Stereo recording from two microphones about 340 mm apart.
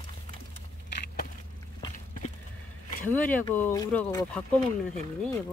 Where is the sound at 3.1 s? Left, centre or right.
Centre.